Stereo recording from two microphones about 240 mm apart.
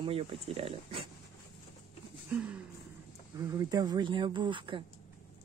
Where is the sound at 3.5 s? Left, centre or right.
Centre.